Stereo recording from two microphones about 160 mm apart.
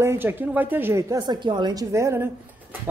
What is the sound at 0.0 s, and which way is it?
A woman's voice, 15° right (ahead or behind).